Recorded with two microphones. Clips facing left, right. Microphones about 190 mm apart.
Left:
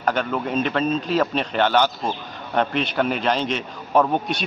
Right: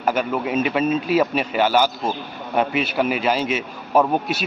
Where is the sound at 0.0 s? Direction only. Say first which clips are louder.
Right 2 dB; 5° right (ahead or behind).